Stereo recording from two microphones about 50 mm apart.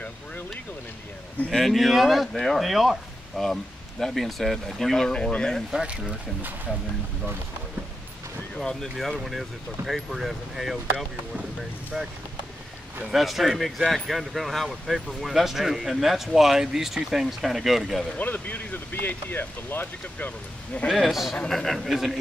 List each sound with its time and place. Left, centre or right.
1.5 s speech: centre
8.5 s speech: centre
8.9 s speech: centre
13.0 s speech: centre
18.1 s speech: left
20.9 s speech: centre
21.8 s speech: centre